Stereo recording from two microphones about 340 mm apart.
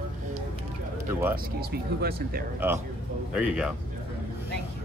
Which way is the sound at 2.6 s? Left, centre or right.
Centre.